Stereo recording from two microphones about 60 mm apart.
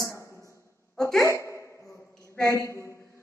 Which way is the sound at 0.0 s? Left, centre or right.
Left.